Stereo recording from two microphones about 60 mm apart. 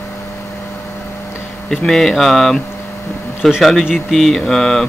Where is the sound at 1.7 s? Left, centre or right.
Centre.